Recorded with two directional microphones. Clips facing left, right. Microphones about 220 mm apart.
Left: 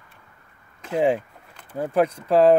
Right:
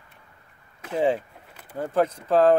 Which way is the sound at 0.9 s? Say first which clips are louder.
Left 2 dB; 15° left (ahead or behind).